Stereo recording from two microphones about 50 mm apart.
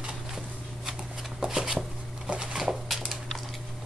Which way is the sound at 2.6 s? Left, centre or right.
Centre.